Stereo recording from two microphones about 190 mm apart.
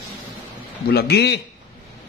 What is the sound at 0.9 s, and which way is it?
Speech, 60° left (ahead or behind).